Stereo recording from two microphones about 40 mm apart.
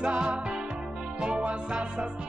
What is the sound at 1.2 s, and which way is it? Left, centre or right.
Music, right.